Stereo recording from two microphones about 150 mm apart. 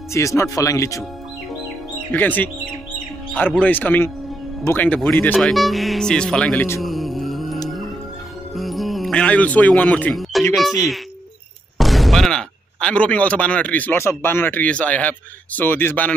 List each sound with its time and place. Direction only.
0.1 s speech: 20° left (ahead or behind)
2.1 s speech: 10° left (ahead or behind)
6.8 s music: centre (ahead or behind)
8.5 s speech: centre (ahead or behind)